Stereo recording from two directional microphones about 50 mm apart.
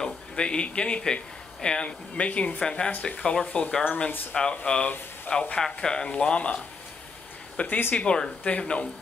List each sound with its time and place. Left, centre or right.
0.0 s speech: centre
3.8 s speech: left
4.3 s speech: centre
7.6 s speech: left
7.9 s speech: left